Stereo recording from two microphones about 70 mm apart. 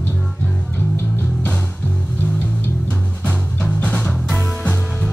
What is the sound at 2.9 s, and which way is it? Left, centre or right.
Music, centre.